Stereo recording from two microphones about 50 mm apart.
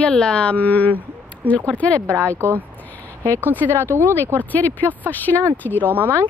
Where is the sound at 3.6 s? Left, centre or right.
Right.